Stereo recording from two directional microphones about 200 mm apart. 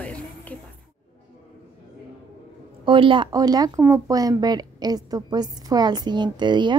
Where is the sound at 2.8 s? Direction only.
25° right (ahead or behind).